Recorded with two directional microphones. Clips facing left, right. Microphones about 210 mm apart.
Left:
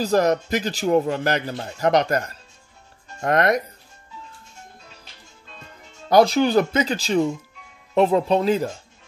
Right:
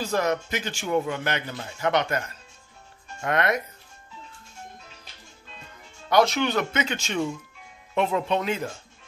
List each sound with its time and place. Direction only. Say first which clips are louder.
0.0 s a man's voice: left 6 dB; 40° left (ahead or behind)
6.0 s a man's voice: left 5 dB; 35° left (ahead or behind)